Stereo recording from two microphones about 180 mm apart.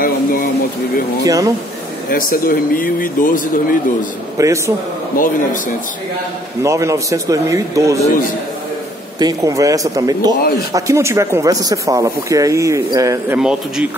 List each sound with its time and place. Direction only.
0.0 s a sound: 50° left (ahead or behind)
1.2 s speech: 20° right (ahead or behind)
2.0 s speech: 55° left (ahead or behind)
4.4 s speech: 15° right (ahead or behind)
5.1 s speech: 50° left (ahead or behind)
6.6 s speech: 15° right (ahead or behind)
9.2 s speech: 20° right (ahead or behind)
13.4 s speech: 5° right (ahead or behind)